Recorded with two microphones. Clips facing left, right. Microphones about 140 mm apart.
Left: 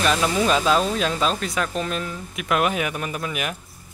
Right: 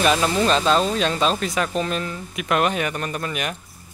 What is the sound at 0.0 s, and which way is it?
Speech, centre (ahead or behind).